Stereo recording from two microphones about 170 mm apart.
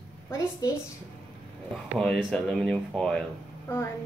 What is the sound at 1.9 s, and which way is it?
Speech, 5° left (ahead or behind).